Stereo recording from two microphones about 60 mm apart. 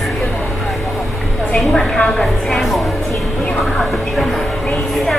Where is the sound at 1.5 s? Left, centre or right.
Centre.